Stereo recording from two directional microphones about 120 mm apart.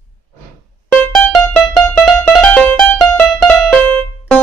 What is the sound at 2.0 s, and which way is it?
Music, 5° left (ahead or behind).